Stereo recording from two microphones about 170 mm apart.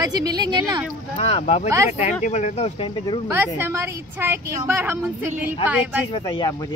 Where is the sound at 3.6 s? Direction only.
15° right (ahead or behind).